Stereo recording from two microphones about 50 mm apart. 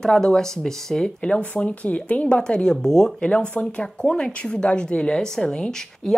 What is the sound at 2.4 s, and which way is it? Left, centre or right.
Speech, centre.